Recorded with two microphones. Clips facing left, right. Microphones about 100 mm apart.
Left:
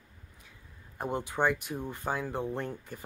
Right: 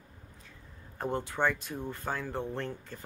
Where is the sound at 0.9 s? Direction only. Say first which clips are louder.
Left 1 dB; 15° left (ahead or behind).